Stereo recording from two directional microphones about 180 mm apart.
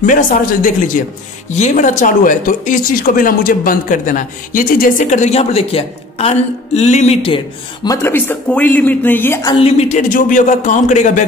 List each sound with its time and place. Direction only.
0.0 s speech: 45° left (ahead or behind); by 9.6 s 15° left (ahead or behind)
9.6 s speech: 35° left (ahead or behind)